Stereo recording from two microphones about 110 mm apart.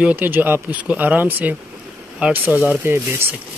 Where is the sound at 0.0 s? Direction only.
15° right (ahead or behind).